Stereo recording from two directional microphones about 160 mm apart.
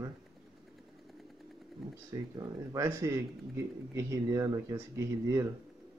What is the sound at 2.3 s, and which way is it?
Speech, 20° right (ahead or behind).